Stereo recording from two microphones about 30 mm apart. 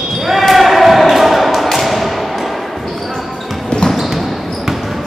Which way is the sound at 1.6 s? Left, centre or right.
Centre.